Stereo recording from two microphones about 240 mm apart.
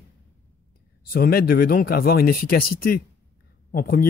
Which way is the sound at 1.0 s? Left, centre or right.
Left.